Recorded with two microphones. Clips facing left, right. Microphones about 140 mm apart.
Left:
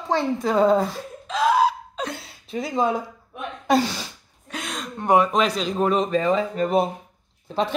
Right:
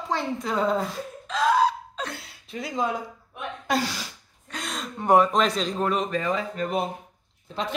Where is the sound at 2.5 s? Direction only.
25° left (ahead or behind).